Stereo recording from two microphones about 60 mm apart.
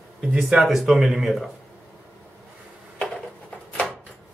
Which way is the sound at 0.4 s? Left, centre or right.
Centre.